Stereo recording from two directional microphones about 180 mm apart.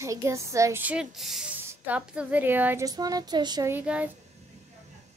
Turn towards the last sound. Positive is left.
turn(degrees=-10)  # may be behind; listen again after turning